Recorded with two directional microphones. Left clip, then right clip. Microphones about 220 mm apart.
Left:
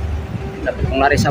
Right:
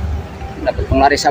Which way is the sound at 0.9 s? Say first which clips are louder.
Right 3 dB; centre (ahead or behind).